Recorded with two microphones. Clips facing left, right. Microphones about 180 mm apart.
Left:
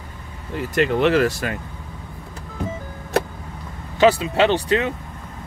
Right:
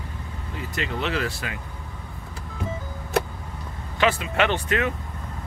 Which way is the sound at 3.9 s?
35° left (ahead or behind).